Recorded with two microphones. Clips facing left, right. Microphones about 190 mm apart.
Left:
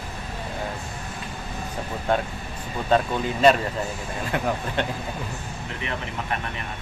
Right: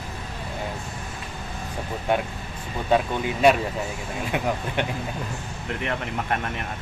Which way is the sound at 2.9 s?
10° right (ahead or behind).